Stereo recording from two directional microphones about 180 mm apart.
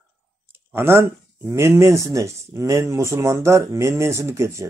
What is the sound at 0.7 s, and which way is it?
Speech, 15° right (ahead or behind).